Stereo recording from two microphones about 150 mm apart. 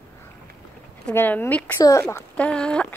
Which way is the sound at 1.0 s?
10° left (ahead or behind).